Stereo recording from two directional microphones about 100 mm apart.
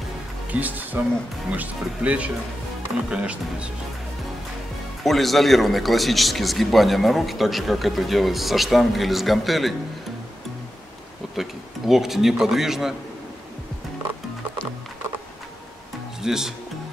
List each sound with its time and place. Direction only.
0.5 s speech: 15° right (ahead or behind)
5.0 s speech: centre (ahead or behind)
11.3 s speech: 5° right (ahead or behind)
16.2 s speech: 5° right (ahead or behind)